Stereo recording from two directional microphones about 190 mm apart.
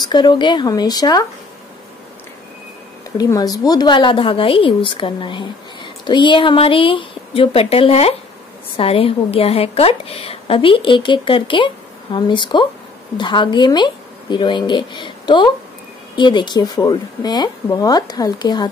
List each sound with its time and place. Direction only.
0.0 s a woman's voice: 25° left (ahead or behind)
3.2 s a woman's voice: 20° left (ahead or behind)